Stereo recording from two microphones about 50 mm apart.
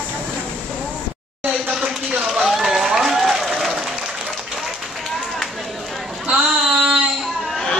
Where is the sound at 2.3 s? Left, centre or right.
Centre.